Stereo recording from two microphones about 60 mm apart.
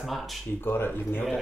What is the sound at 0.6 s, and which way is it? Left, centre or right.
Speech, left.